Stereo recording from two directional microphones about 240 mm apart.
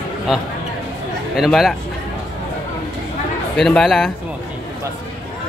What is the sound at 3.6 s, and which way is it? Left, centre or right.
Speech, centre.